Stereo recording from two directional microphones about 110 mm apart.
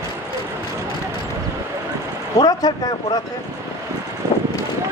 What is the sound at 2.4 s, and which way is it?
Speech, 35° left (ahead or behind).